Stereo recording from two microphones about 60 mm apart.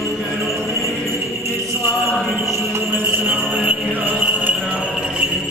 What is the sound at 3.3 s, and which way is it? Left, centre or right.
Music, right.